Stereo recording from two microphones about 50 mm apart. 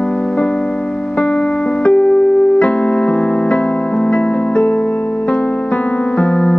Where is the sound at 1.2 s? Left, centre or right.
Left.